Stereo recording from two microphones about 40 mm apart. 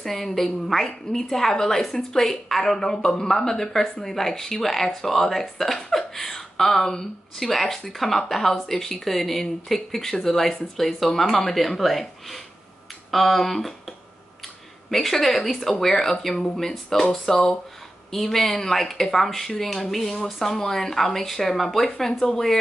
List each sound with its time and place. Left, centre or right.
0.0 s a woman's voice: centre
14.4 s a sound: centre
15.8 s a woman's voice: centre